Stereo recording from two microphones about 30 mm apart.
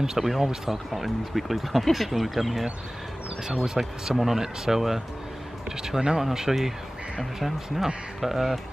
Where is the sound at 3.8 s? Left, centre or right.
Centre.